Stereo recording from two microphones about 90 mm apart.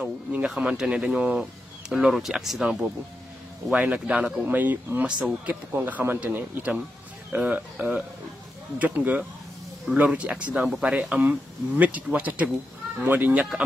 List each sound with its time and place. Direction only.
0.0 s speech: 10° right (ahead or behind)